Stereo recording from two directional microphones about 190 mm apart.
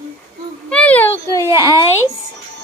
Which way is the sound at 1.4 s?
15° right (ahead or behind).